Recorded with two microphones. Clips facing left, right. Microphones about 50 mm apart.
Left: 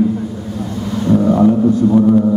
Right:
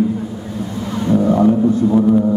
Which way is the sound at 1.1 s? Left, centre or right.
Centre.